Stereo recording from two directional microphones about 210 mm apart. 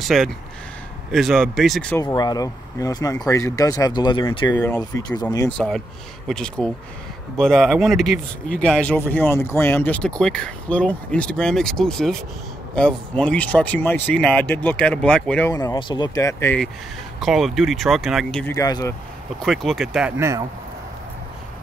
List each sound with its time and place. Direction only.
0.0 s speech: centre (ahead or behind); by 5.5 s 15° left (ahead or behind)
6.2 s speech: 5° left (ahead or behind)
15.5 s speech: 20° left (ahead or behind)
17.2 s speech: centre (ahead or behind)
18.5 s speech: 15° left (ahead or behind)
19.4 s speech: centre (ahead or behind)